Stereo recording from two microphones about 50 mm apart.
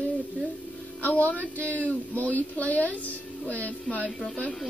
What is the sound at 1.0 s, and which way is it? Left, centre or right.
Speech, left.